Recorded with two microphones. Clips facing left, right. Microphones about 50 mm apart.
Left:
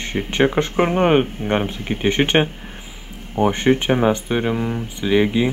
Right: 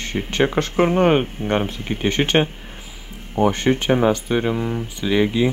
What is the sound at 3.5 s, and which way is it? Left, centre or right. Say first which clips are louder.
Speech: left 1 dB; centre.